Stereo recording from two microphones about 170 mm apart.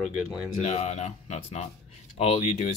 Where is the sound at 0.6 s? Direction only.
40° left (ahead or behind).